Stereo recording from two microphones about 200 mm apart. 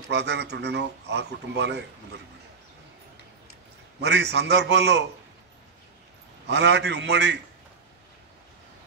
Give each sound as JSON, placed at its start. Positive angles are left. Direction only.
{"t": 0.1, "sound": "speech", "side_deg": -60}
{"t": 4.0, "sound": "speech", "side_deg": -60}
{"t": 6.4, "sound": "speech", "side_deg": -60}